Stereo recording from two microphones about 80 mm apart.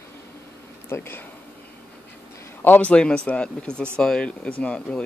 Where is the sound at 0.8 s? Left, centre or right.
Left.